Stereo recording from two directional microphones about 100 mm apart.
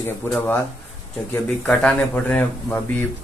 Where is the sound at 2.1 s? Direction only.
20° left (ahead or behind).